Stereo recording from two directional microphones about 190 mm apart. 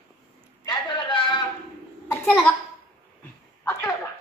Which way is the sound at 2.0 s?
10° left (ahead or behind).